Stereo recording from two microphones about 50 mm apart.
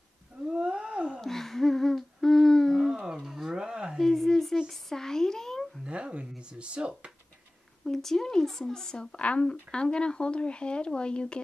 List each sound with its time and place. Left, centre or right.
0.5 s wild animals: centre
1.2 s humming: centre
3.2 s a sound: centre
4.0 s a sound: centre
5.9 s speech: right
7.8 s speech: centre